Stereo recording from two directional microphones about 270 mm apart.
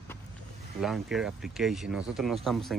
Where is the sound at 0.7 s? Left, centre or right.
Centre.